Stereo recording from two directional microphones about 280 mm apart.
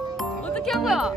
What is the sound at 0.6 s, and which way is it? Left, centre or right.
Music, centre.